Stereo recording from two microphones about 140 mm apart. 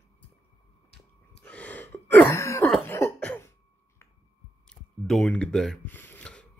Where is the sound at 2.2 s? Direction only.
20° left (ahead or behind).